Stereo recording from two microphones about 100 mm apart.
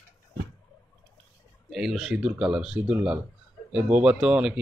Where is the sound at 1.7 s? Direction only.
Centre (ahead or behind).